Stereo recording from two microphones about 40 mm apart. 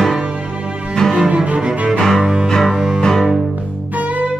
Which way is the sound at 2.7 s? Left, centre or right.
Centre.